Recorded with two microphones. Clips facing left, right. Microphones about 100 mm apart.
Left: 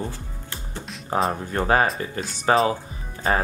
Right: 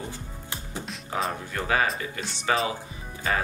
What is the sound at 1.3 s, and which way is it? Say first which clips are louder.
Speech: left 6 dB; 40° left (ahead or behind).